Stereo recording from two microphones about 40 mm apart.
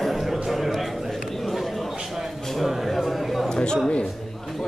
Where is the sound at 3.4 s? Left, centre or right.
Left.